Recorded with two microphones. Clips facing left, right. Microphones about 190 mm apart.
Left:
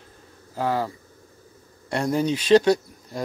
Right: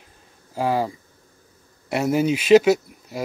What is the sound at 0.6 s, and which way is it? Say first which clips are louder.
Speech: right 3 dB; 15° right (ahead or behind).